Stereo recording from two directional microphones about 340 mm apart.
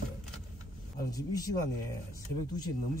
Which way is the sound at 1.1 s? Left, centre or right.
Centre.